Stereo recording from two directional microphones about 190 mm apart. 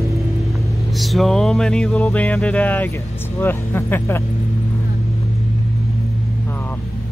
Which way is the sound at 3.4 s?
10° left (ahead or behind).